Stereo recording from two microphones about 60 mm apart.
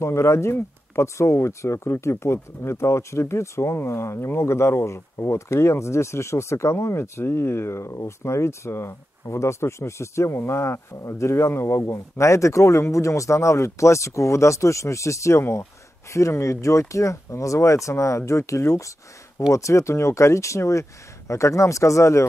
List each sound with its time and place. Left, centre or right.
0.0 s speech: left